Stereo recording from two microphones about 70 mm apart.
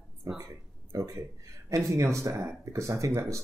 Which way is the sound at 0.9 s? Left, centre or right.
Right.